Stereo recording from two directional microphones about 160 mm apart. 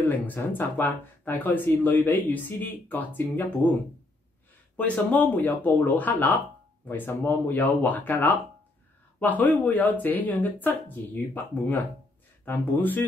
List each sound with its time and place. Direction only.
0.0 s speech: 10° left (ahead or behind)
4.7 s speech: 10° left (ahead or behind)